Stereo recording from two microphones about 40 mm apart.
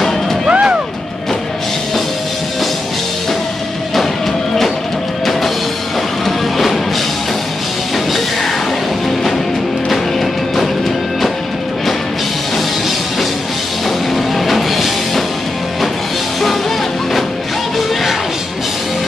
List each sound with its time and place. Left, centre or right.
0.5 s music: right
6.2 s music: centre
14.1 s music: centre